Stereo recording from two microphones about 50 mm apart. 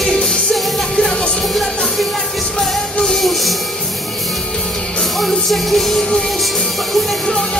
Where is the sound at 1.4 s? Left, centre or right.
Centre.